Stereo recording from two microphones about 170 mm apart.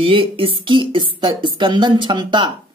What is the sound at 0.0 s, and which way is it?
A woman's voice, 30° right (ahead or behind).